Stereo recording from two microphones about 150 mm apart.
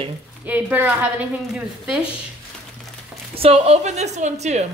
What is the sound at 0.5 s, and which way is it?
A woman's voice, 10° right (ahead or behind).